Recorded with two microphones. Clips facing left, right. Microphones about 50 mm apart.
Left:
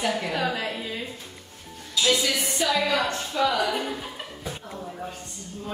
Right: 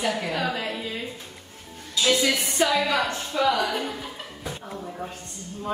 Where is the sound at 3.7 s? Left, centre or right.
Centre.